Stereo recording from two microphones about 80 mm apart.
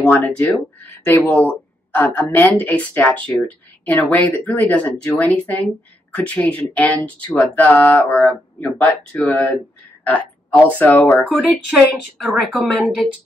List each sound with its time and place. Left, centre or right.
0.0 s speech: left
10.6 s speech: left
11.7 s a woman's voice: centre